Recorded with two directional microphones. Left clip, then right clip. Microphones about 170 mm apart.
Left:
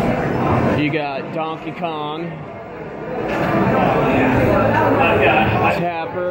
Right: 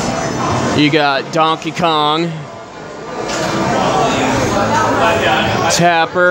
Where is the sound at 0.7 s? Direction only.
45° right (ahead or behind).